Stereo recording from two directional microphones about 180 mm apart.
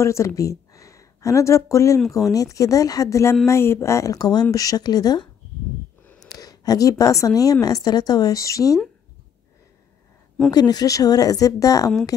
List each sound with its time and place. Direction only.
0.0 s a woman's voice: 15° left (ahead or behind)
10.5 s speech: 20° left (ahead or behind)